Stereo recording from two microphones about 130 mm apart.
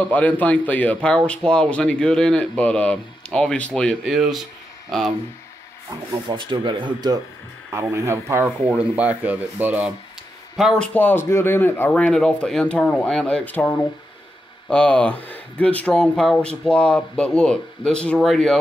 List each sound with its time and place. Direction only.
0.0 s speech: 10° left (ahead or behind)
6.2 s speech: 40° right (ahead or behind)
7.9 s speech: 20° right (ahead or behind)
8.5 s speech: 10° right (ahead or behind)
10.5 s a man's voice: centre (ahead or behind)
10.9 s speech: 15° left (ahead or behind)